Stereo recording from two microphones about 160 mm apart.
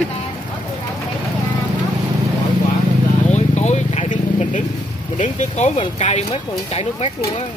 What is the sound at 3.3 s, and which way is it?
Vehicle, 45° left (ahead or behind).